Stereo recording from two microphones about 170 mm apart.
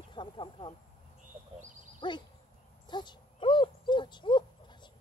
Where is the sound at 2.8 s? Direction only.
25° left (ahead or behind).